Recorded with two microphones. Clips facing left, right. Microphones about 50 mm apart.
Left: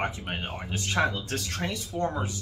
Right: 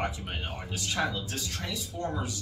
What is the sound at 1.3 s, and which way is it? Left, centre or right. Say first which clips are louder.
Speech: left 4 dB; left.